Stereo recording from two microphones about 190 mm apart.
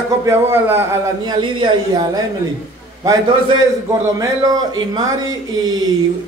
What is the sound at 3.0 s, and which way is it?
Speech, 20° right (ahead or behind).